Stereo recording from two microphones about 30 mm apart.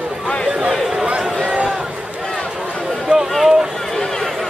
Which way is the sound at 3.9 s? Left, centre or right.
Centre.